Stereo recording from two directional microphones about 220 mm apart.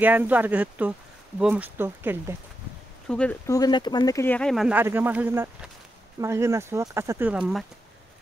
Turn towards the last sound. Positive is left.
turn(degrees=-5)  # may be behind; listen again after turning